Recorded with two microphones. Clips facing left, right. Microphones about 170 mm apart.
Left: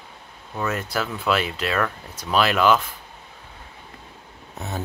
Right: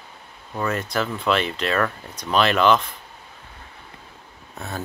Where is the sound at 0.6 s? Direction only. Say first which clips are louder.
Right 2 dB; 5° left (ahead or behind).